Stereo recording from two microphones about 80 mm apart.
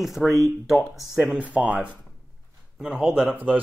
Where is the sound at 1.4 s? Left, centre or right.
Centre.